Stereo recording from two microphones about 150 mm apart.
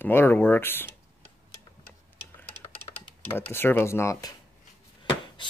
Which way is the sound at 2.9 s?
35° left (ahead or behind).